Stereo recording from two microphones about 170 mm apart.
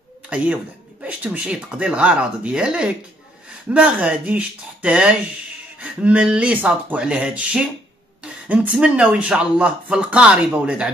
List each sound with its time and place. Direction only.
0.3 s speech: 10° right (ahead or behind)